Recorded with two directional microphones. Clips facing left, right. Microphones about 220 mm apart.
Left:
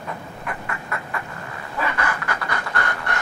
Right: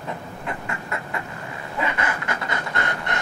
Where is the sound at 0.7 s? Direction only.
25° right (ahead or behind).